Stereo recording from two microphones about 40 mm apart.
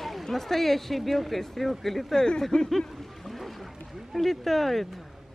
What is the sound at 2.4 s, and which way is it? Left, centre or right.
Speech, centre.